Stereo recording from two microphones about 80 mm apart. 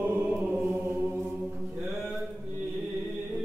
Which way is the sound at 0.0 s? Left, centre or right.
Right.